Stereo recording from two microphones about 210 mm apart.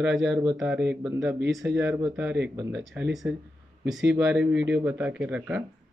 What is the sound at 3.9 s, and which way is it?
Speech, centre (ahead or behind).